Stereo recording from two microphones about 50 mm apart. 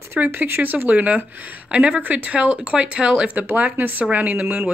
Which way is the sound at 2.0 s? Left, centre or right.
Right.